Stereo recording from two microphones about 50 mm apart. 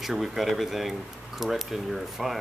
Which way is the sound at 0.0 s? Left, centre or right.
Centre.